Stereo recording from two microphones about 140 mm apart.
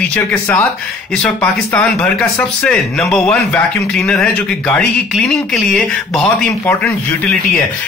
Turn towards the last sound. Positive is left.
turn(degrees=5)  # may be behind; listen again after turning